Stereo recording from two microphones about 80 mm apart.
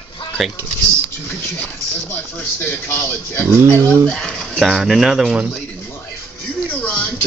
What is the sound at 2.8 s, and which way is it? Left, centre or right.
Speech, left.